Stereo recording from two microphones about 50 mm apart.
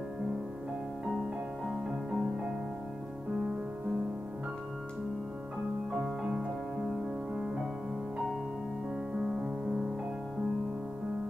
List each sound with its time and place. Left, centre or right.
1.7 s music: centre
5.9 s music: centre
9.1 s music: centre